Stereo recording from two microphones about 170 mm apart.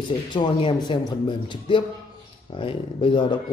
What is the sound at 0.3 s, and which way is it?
A man's voice, 30° left (ahead or behind).